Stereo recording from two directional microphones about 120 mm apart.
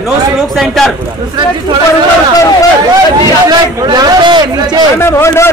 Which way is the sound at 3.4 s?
35° right (ahead or behind).